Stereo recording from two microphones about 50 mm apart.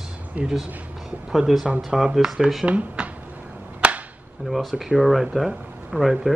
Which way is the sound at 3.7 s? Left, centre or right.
Right.